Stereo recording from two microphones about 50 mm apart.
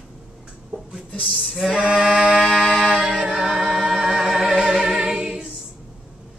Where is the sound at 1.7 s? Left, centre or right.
Centre.